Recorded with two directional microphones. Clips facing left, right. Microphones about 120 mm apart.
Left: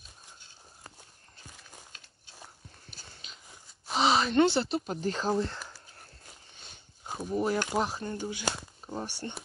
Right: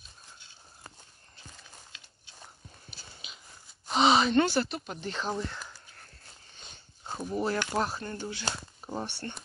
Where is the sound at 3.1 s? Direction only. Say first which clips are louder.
Right 1 dB; 10° right (ahead or behind).